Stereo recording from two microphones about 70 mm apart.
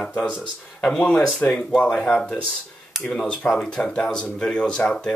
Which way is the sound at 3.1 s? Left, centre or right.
Centre.